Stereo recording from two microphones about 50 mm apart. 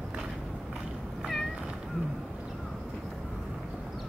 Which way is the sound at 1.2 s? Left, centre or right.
Centre.